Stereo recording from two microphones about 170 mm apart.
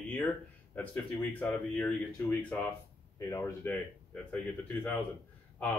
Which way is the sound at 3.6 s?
10° left (ahead or behind).